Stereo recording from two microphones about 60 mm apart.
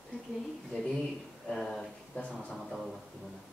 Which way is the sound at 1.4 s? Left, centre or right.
Centre.